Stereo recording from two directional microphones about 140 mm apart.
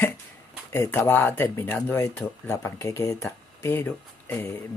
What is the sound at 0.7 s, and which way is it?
Speech, 15° left (ahead or behind).